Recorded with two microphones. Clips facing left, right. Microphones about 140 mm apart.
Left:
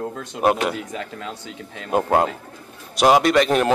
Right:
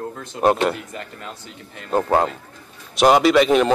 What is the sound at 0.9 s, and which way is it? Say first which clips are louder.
Speech: left 3 dB; 90° left.